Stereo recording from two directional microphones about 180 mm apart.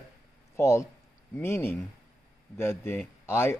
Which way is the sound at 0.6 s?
15° left (ahead or behind).